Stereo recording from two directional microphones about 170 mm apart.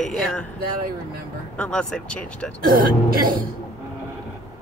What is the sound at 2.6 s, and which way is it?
Speech, 60° right (ahead or behind).